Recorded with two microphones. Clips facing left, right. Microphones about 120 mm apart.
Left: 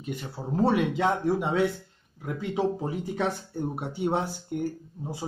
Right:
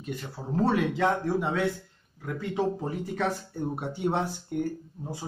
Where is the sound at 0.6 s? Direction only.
15° left (ahead or behind).